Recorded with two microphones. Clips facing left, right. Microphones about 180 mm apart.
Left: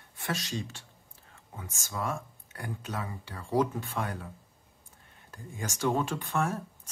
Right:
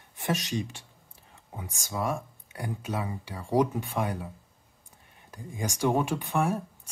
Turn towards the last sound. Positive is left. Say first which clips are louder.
# right 3 dB
turn(degrees=-15)  # may be behind; listen again after turning